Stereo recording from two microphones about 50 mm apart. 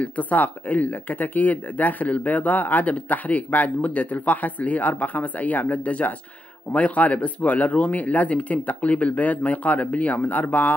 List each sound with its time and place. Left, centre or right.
0.0 s speech: left